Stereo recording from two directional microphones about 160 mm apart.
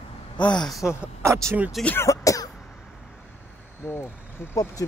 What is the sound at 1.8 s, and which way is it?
Speech, 15° left (ahead or behind).